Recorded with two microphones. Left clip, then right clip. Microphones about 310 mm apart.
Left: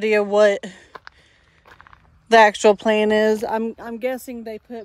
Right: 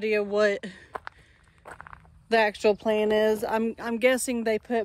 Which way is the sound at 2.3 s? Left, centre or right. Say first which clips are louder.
Left 10 dB; left.